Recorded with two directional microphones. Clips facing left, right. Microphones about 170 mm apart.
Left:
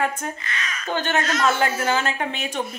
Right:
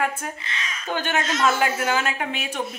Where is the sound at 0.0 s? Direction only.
5° right (ahead or behind).